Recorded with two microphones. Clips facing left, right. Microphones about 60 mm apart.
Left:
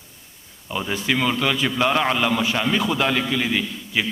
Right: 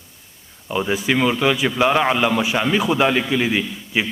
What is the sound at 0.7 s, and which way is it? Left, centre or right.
A man's voice, centre.